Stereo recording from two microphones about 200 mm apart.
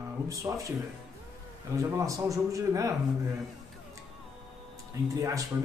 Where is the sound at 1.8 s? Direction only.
15° right (ahead or behind).